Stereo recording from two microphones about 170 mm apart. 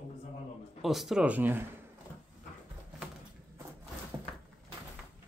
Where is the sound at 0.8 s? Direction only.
Centre (ahead or behind).